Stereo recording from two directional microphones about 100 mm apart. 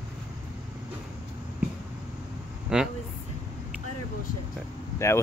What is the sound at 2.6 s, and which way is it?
Speech, 5° right (ahead or behind).